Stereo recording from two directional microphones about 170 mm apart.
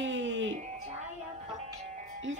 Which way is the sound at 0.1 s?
90° right.